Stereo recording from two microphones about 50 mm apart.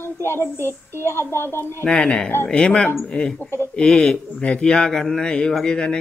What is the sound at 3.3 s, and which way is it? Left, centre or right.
Speech, left.